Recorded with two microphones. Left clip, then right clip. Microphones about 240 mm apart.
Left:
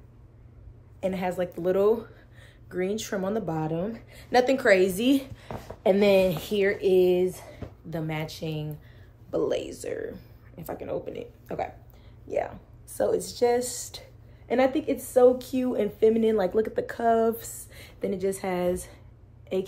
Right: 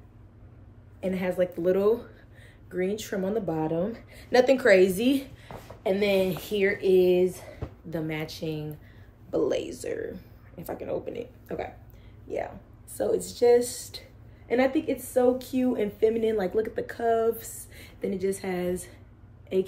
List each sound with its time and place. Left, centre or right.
1.0 s a woman's voice: centre
5.8 s a woman's voice: left